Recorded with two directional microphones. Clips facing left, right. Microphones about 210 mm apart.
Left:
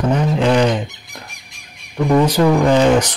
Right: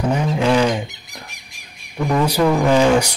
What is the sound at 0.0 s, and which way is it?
Speech, 10° right (ahead or behind).